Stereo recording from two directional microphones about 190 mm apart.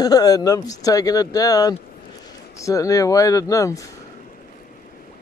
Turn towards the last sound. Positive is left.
turn(degrees=15)  # may be behind; listen again after turning